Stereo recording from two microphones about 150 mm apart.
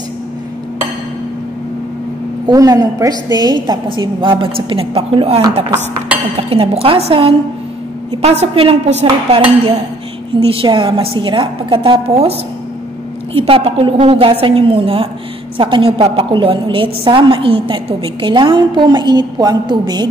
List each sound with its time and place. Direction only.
2.4 s a woman's voice: 25° right (ahead or behind)